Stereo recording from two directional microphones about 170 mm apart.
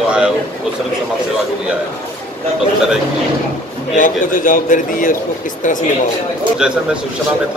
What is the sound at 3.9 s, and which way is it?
A man's voice, 50° left (ahead or behind).